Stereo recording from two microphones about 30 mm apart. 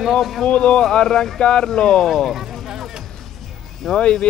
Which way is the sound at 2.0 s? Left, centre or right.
Centre.